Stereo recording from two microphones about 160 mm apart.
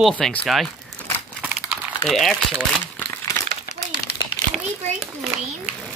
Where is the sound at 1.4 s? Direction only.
5° right (ahead or behind).